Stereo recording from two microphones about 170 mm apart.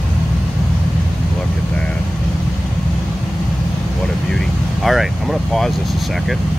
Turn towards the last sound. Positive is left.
turn(degrees=0)  # may be behind; listen again after turning